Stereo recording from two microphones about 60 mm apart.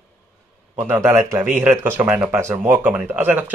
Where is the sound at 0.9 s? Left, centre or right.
Right.